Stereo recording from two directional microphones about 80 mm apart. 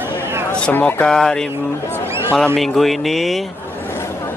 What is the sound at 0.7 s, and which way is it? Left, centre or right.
Speech, centre.